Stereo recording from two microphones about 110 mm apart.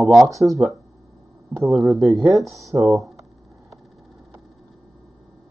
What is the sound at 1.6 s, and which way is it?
Speech, centre (ahead or behind).